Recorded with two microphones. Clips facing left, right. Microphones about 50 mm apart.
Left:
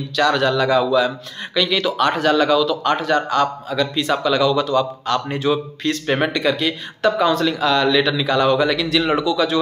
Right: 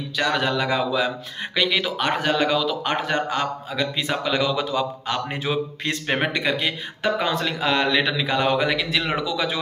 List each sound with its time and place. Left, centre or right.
0.2 s a man's voice: centre
9.0 s speech: centre